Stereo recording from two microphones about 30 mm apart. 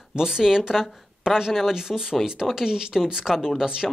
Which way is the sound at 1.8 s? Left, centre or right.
Centre.